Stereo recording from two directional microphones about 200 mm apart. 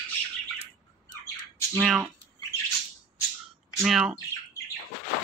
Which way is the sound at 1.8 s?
Centre (ahead or behind).